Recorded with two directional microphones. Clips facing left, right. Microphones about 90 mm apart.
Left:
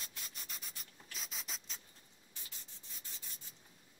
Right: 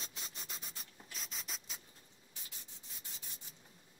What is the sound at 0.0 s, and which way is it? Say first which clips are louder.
Rub: right 2 dB; 25° right (ahead or behind).